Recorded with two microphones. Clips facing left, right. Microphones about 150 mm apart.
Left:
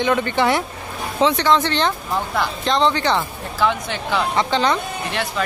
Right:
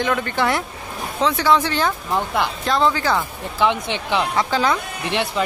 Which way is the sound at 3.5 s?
20° right (ahead or behind).